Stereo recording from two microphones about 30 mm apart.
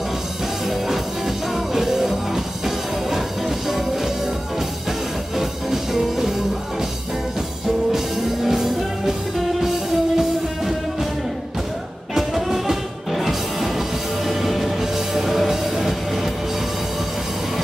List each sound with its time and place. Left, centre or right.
0.7 s music: centre
5.3 s music: centre
8.5 s music: centre
12.1 s music: centre